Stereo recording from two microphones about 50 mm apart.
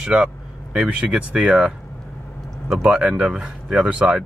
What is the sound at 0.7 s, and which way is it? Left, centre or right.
Speech, right.